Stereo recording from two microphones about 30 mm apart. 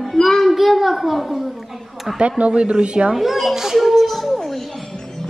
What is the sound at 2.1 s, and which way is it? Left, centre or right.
Speech, right.